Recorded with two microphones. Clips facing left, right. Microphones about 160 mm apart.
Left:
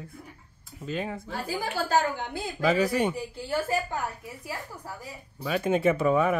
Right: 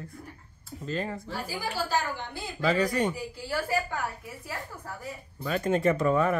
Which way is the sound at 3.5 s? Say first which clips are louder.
Left 2 dB; 20° left (ahead or behind).